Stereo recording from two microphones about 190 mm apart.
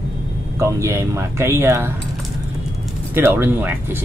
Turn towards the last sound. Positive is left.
turn(degrees=-10)  # may be behind; listen again after turning